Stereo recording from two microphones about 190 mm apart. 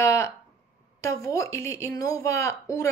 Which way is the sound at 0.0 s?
15° left (ahead or behind).